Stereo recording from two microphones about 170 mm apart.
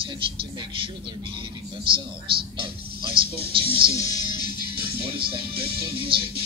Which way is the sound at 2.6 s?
30° right (ahead or behind).